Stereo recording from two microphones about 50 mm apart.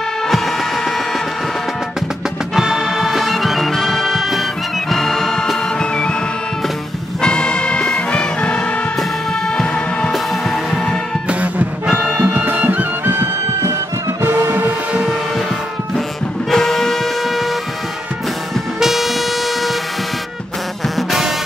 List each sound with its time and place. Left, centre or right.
2.5 s music: centre
7.2 s music: centre
10.1 s music: centre
11.2 s music: right
12.4 s music: right
16.4 s music: centre
18.8 s vehicle: centre